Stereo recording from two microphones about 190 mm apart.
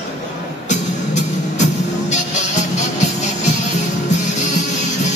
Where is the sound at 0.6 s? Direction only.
40° left (ahead or behind).